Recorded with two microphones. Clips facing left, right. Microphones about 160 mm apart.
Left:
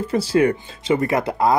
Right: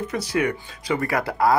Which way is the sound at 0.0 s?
30° left (ahead or behind).